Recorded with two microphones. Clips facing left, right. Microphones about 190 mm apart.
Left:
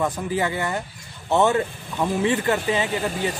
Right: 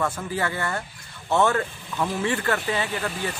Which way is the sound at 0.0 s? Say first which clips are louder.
Left 3 dB; 15° left (ahead or behind).